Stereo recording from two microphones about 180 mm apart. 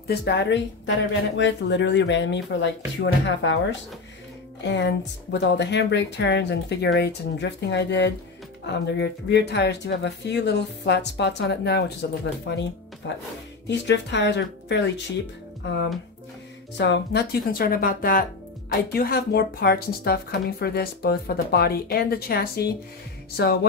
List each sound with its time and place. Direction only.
0.0 s speech: 65° left (ahead or behind); by 3.5 s 85° left
4.6 s speech: 75° left (ahead or behind)
12.4 s speech: 80° left; by 23.6 s 60° left (ahead or behind)